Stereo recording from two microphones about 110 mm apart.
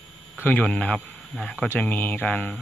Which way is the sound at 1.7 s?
20° left (ahead or behind).